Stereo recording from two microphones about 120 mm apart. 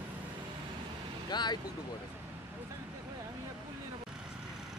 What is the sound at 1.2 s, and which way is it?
Speech, 35° left (ahead or behind).